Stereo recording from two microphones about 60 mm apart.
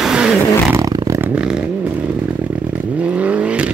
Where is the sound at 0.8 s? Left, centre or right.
Right.